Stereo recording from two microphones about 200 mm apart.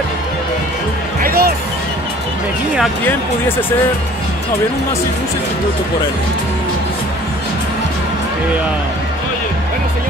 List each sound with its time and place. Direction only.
1.2 s music: 50° right (ahead or behind)